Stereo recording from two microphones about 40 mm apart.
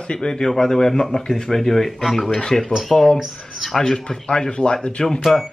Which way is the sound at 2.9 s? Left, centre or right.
Centre.